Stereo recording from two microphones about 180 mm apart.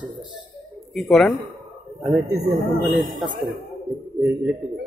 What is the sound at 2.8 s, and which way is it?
Speech, 50° right (ahead or behind).